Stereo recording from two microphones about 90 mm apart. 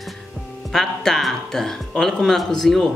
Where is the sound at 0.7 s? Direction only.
5° left (ahead or behind).